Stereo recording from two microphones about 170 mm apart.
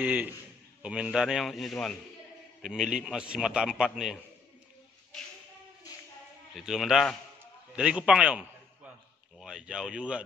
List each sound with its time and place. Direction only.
0.0 s a man's voice: 10° right (ahead or behind)
6.5 s a man's voice: centre (ahead or behind)